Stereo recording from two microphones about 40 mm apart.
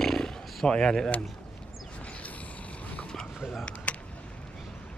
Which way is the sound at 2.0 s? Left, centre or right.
Left.